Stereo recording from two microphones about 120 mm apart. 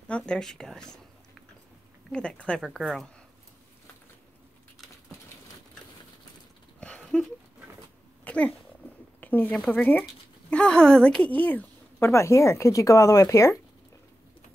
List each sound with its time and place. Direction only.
0.1 s speech: 5° left (ahead or behind)
2.1 s speech: 10° left (ahead or behind)
6.8 s a sound: 10° left (ahead or behind)
8.2 s cat: 10° left (ahead or behind)
9.2 s a woman's voice: 15° left (ahead or behind)